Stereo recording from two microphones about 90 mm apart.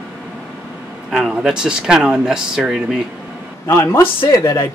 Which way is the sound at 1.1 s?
5° right (ahead or behind).